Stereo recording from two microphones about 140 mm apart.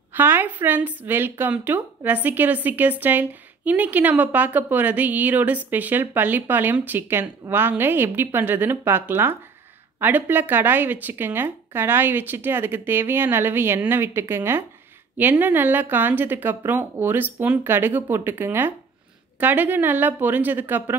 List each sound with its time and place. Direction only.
0.1 s a woman's voice: 15° right (ahead or behind)